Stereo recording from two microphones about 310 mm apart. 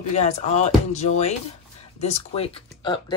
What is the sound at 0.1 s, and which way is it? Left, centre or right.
Speech, left.